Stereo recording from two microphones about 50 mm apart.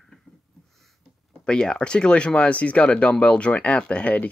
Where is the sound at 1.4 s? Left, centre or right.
Centre.